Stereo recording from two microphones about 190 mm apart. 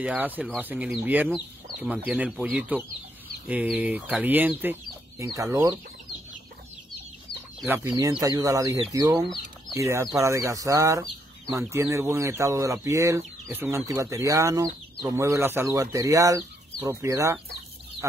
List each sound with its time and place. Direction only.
0.0 s speech: 5° right (ahead or behind)
7.6 s speech: 10° right (ahead or behind)